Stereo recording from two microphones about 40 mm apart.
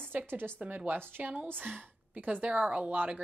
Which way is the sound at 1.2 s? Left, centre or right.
Right.